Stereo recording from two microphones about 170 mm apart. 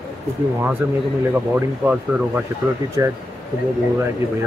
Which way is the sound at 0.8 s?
15° right (ahead or behind).